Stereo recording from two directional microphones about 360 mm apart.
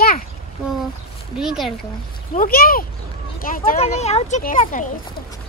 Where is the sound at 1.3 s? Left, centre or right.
Centre.